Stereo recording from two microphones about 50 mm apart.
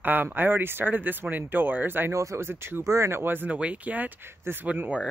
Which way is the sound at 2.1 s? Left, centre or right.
Right.